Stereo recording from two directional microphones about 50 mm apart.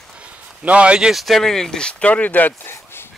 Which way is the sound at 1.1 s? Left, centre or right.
Centre.